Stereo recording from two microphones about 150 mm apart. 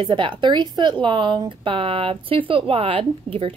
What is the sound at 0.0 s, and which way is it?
Speech, 30° right (ahead or behind).